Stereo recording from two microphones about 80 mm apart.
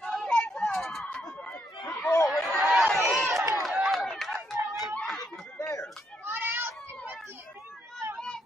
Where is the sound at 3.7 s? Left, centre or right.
Centre.